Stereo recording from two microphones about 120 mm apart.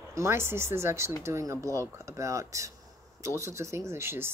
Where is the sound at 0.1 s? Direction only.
20° right (ahead or behind).